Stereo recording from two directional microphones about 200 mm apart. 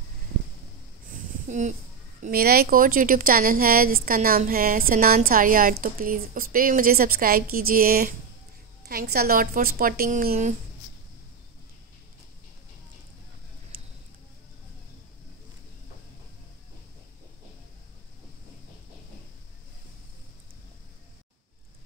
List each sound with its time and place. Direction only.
1.5 s speech: 35° right (ahead or behind)
2.2 s speech: 50° right (ahead or behind)